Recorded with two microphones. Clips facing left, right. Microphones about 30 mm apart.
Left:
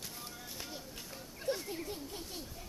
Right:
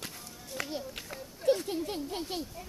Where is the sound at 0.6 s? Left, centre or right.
Right.